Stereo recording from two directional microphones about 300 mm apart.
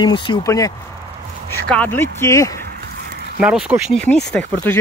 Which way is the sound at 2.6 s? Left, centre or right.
Right.